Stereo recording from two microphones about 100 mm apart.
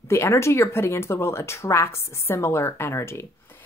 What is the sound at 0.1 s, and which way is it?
Speech, 25° left (ahead or behind).